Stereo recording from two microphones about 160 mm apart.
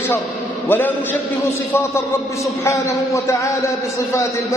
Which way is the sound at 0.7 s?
10° left (ahead or behind).